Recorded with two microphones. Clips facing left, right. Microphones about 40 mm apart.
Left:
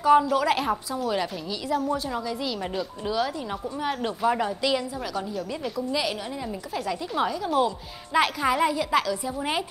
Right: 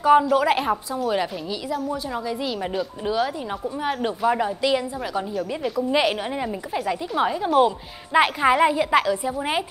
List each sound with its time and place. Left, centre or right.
0.0 s a woman's voice: centre
1.7 s a woman's voice: centre
5.9 s a woman's voice: right
6.7 s a woman's voice: centre